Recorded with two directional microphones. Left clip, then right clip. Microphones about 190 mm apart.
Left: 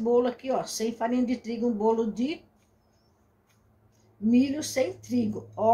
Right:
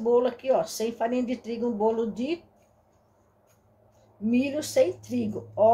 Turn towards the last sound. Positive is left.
turn(degrees=-15)  # may be behind; listen again after turning